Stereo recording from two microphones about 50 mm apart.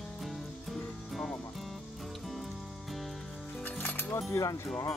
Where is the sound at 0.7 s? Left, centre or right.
Centre.